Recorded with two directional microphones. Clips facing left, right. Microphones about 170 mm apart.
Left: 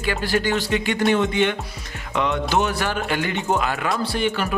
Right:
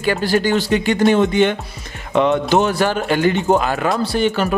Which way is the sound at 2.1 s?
30° right (ahead or behind).